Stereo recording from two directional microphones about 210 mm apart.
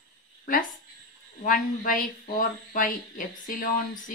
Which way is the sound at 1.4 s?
40° left (ahead or behind).